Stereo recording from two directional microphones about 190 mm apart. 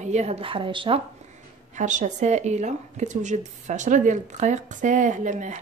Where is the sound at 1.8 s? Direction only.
40° right (ahead or behind).